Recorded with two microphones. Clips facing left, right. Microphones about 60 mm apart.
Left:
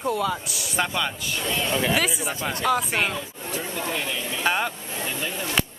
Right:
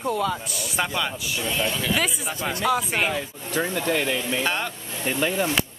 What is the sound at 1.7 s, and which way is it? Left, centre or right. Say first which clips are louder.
Speech: left 3 dB; left.